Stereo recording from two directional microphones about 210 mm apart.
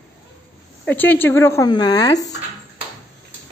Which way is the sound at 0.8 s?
10° left (ahead or behind).